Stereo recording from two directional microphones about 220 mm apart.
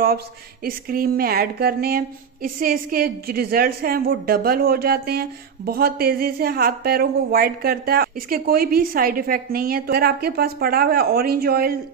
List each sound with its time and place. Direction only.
0.7 s a woman's voice: 40° right (ahead or behind)